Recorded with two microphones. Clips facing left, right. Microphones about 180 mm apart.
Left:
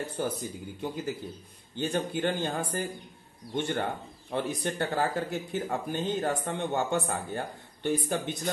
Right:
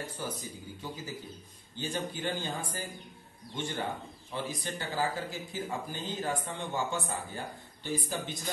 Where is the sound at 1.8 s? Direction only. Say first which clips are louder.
Left 6 dB; 60° left (ahead or behind).